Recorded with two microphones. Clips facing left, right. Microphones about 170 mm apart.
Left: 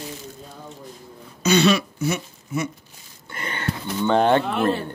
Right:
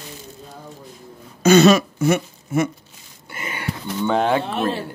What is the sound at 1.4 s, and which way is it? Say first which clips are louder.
Speech: right 6 dB; 45° right (ahead or behind).